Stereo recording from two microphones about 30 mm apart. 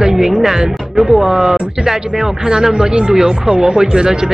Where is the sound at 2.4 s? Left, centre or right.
Right.